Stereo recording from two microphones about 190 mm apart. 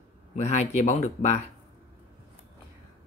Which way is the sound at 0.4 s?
35° left (ahead or behind).